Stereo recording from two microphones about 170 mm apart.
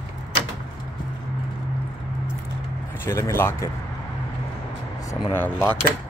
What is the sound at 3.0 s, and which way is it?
Speech, 15° left (ahead or behind).